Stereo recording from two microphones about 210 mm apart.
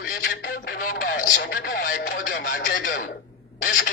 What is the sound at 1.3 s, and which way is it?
Speech, 45° left (ahead or behind).